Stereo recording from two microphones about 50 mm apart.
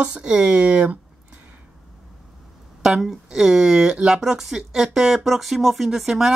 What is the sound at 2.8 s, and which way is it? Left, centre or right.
Speech, centre.